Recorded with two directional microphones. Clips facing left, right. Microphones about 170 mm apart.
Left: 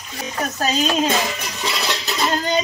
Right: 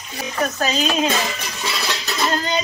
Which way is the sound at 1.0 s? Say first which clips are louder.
Left 1 dB; 20° left (ahead or behind).